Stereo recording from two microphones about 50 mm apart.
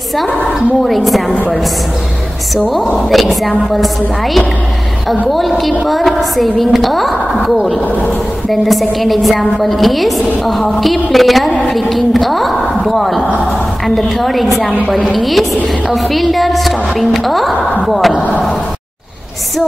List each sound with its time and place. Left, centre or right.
0.8 s a woman's voice: centre
1.3 s a woman's voice: left
3.1 s a woman's voice: centre